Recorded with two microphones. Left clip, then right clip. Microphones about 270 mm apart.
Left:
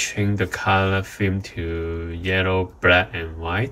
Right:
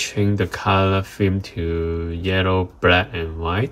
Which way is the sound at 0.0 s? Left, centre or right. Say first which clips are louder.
Right 2 dB; centre.